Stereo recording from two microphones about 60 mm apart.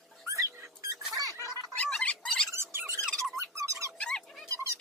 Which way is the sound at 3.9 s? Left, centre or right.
Centre.